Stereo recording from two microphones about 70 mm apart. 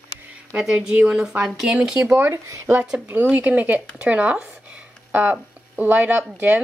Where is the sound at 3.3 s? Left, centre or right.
Right.